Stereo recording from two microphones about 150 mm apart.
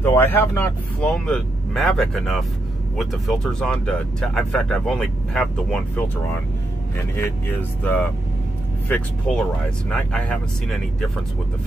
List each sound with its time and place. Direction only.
0.0 s speech: 15° left (ahead or behind)
7.0 s speech: 15° left (ahead or behind)